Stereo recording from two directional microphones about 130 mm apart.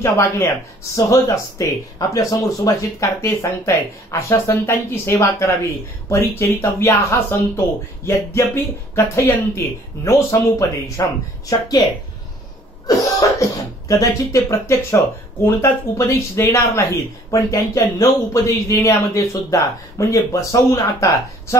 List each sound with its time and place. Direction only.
0.0 s speech: 25° left (ahead or behind)
12.8 s speech: 25° left (ahead or behind)